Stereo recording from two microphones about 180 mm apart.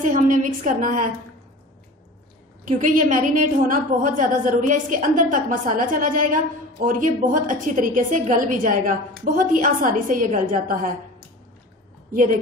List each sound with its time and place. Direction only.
0.0 s a woman's voice: 45° right (ahead or behind)
2.6 s a woman's voice: 45° right (ahead or behind)
12.1 s speech: 45° right (ahead or behind)